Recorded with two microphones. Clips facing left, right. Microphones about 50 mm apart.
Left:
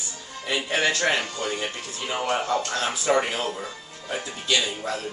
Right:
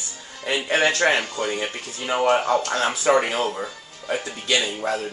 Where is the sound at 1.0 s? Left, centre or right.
Right.